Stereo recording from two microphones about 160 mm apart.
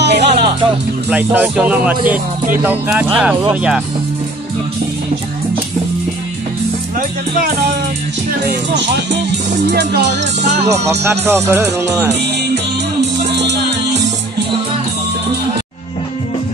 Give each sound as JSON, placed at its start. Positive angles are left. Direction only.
{"t": 0.0, "sound": "music", "side_deg": -90}
{"t": 1.1, "sound": "speech", "side_deg": -10}
{"t": 7.0, "sound": "speech", "side_deg": -60}
{"t": 8.3, "sound": "speech", "side_deg": -90}
{"t": 10.5, "sound": "speech", "side_deg": -45}
{"t": 11.1, "sound": "speech", "side_deg": -15}
{"t": 13.0, "sound": "music", "side_deg": -90}